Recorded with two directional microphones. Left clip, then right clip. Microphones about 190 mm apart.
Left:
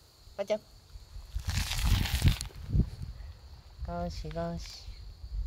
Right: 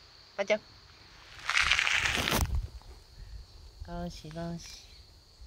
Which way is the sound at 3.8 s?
20° left (ahead or behind).